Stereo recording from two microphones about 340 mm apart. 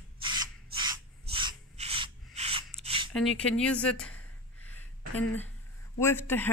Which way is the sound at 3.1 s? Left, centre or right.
Centre.